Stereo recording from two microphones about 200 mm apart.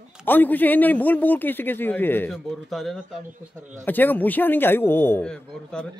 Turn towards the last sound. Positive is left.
turn(degrees=5)  # may be behind; listen again after turning